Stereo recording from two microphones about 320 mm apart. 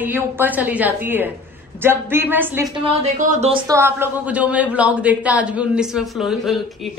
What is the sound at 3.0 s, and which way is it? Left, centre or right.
Speech, right.